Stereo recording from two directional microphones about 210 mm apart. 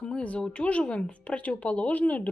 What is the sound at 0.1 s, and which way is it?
Speech, 5° left (ahead or behind).